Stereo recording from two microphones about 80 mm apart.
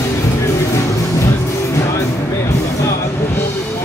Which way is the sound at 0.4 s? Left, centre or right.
Left.